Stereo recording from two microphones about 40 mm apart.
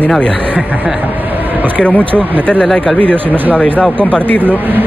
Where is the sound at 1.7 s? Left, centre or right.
Left.